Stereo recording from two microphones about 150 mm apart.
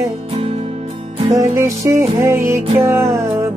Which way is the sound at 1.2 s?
20° right (ahead or behind).